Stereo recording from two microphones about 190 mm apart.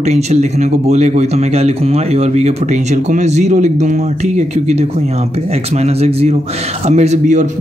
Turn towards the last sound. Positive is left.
turn(degrees=-35)  # may be behind; listen again after turning